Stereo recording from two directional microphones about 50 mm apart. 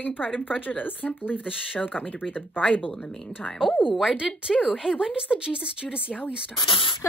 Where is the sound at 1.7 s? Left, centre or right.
Left.